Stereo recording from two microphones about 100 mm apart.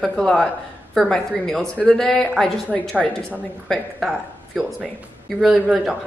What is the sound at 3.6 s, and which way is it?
A woman's voice, 5° left (ahead or behind).